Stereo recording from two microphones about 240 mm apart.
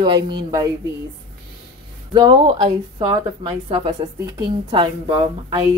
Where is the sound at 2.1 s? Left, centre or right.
Centre.